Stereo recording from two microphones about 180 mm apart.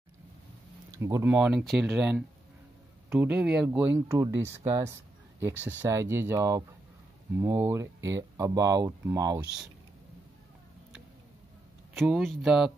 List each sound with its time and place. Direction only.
0.9 s speech: 15° right (ahead or behind)
11.9 s speech: centre (ahead or behind)